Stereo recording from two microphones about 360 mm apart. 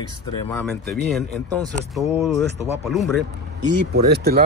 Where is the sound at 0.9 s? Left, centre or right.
Right.